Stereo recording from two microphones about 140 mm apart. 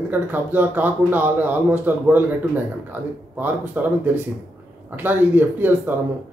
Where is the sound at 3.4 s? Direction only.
15° right (ahead or behind).